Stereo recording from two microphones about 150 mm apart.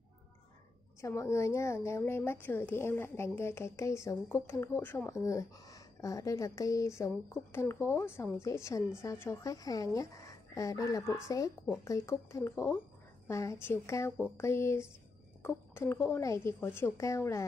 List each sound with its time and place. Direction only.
1.0 s a woman's voice: 20° left (ahead or behind)